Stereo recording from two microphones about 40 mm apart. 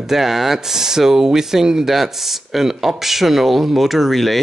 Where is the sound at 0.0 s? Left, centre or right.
Centre.